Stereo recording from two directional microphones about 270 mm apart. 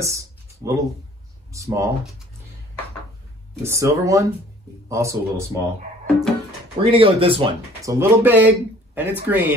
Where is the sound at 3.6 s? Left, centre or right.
Centre.